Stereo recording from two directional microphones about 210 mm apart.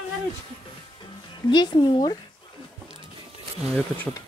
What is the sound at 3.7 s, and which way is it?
Speech, 10° left (ahead or behind).